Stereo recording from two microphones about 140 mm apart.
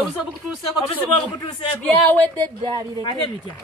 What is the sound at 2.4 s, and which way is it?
Speech, 30° right (ahead or behind).